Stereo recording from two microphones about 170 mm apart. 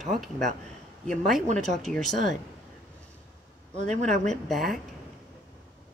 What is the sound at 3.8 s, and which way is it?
Speech, 45° right (ahead or behind).